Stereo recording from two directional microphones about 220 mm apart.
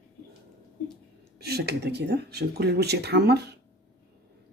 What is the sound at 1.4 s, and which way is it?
Speech, 45° right (ahead or behind).